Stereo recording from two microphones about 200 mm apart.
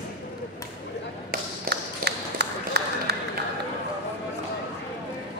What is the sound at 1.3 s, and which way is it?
Tap, 55° right (ahead or behind).